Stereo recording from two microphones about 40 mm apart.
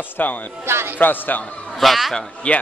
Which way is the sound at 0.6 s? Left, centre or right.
Right.